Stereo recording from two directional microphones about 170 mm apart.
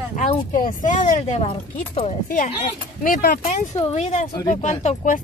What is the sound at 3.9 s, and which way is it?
Speech, 40° left (ahead or behind).